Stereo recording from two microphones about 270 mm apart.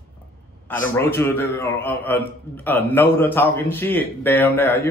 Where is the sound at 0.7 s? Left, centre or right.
Centre.